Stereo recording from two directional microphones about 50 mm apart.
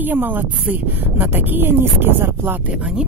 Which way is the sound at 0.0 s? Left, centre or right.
Right.